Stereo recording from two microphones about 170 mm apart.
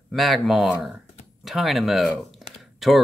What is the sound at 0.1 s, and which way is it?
Speech, centre (ahead or behind).